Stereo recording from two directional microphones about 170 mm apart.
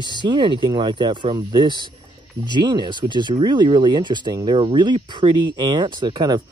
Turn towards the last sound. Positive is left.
turn(degrees=-25)  # may be behind; listen again after turning